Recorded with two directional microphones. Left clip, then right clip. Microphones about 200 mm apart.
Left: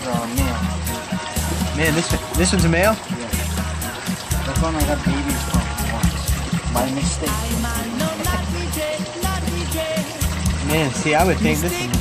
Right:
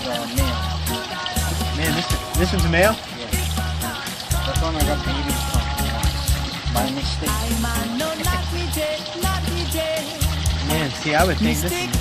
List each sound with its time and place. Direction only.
2.3 s speech: 20° left (ahead or behind)
11.1 s speech: 15° left (ahead or behind)